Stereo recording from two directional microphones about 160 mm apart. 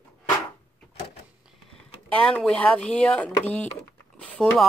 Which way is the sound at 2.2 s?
5° left (ahead or behind).